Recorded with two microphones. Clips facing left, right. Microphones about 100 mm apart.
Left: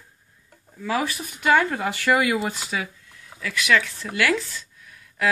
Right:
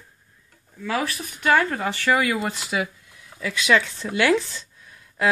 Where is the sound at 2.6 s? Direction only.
10° right (ahead or behind).